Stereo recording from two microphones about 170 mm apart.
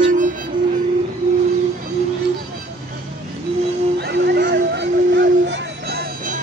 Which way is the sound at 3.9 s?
75° right (ahead or behind).